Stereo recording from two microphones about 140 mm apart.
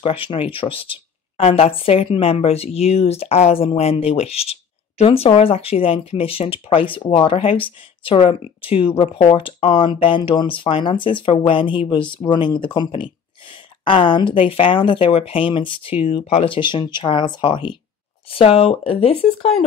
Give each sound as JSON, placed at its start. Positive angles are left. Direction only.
{"t": 0.0, "sound": "speech", "side_deg": 40}